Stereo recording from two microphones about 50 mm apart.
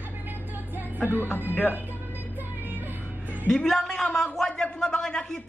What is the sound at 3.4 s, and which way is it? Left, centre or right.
Speech, centre.